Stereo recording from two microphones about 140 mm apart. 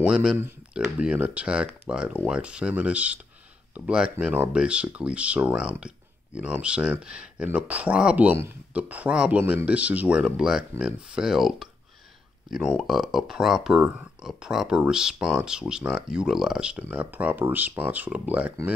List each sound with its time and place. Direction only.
0.0 s speech: 5° right (ahead or behind)